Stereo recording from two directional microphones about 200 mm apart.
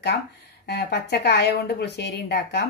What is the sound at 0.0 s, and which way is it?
A woman's voice, 55° left (ahead or behind).